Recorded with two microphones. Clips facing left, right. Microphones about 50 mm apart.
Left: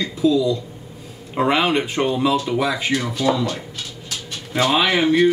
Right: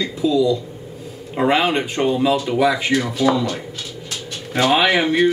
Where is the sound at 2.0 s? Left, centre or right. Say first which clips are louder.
Right 4 dB; centre.